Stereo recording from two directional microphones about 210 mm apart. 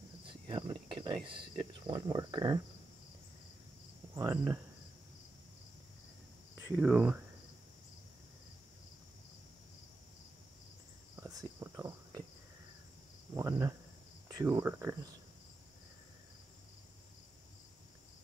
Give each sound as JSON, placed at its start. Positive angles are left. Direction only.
{"t": 0.3, "sound": "speech", "side_deg": -25}
{"t": 4.1, "sound": "speech", "side_deg": -15}
{"t": 6.8, "sound": "speech", "side_deg": -10}
{"t": 11.1, "sound": "cricket", "side_deg": -15}
{"t": 13.3, "sound": "speech", "side_deg": -15}